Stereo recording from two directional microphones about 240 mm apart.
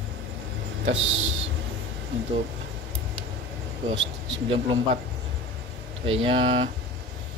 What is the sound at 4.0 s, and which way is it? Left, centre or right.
Speech, right.